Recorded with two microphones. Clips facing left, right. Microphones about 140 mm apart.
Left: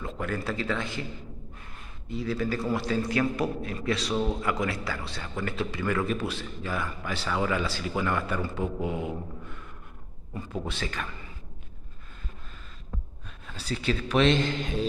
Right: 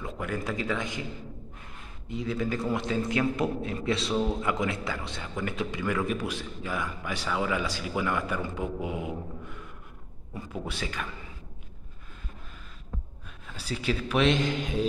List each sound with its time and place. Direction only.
0.0 s a man's voice: 15° right (ahead or behind)
2.0 s a man's voice: 20° right (ahead or behind)
4.1 s a man's voice: centre (ahead or behind)
4.4 s a man's voice: 20° right (ahead or behind)
10.3 s a man's voice: 10° right (ahead or behind)
13.6 s a man's voice: 10° right (ahead or behind)